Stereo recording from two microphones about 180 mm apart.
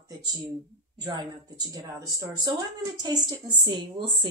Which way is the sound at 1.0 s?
20° right (ahead or behind).